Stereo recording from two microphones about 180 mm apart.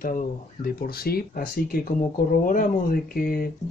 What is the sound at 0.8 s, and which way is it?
Speech, 55° left (ahead or behind).